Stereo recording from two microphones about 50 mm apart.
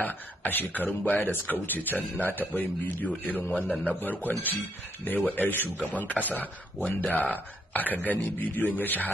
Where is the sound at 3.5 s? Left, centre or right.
Left.